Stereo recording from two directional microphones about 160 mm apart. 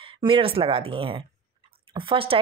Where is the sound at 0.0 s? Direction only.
35° right (ahead or behind).